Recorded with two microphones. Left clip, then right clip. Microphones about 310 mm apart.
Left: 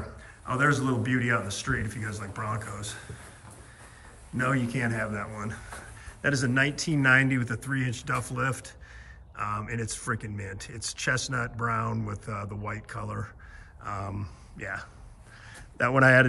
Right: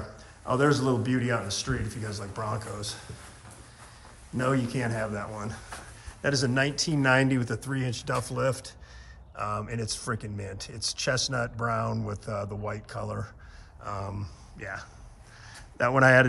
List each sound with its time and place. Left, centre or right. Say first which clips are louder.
0.5 s speech: right 1 dB; centre
4.4 s speech: even; centre
15.5 s a sound: even; centre